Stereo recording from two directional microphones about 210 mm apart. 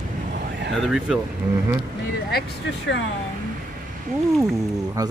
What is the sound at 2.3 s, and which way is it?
Speech, 55° left (ahead or behind).